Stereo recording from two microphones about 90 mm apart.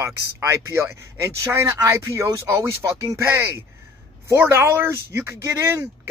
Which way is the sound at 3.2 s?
25° right (ahead or behind).